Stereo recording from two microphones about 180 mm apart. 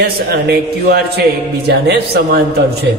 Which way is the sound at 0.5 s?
60° right (ahead or behind).